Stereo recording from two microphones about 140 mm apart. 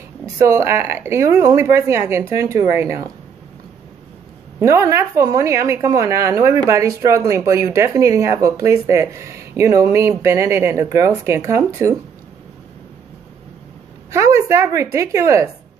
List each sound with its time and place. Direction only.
0.5 s speech: 20° right (ahead or behind)
4.6 s speech: 20° right (ahead or behind)
14.1 s speech: 20° right (ahead or behind)